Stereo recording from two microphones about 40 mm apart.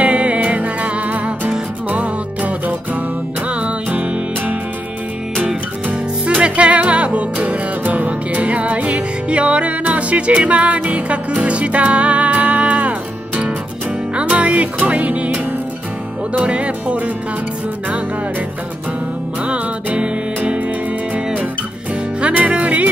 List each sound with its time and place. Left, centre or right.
0.0 s music: right
6.2 s music: right
14.2 s music: right
19.4 s music: right
22.3 s music: right